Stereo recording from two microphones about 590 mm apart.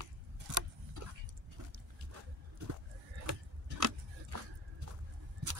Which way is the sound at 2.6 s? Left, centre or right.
Right.